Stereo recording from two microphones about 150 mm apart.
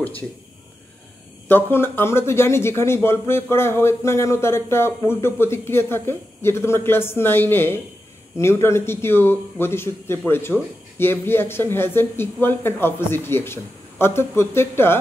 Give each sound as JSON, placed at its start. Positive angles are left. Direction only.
{"t": 1.5, "sound": "a man's voice", "side_deg": 15}